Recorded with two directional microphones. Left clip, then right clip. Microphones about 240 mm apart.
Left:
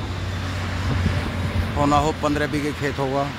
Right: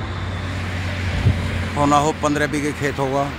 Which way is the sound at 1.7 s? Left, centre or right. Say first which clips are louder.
Right 3 dB; centre.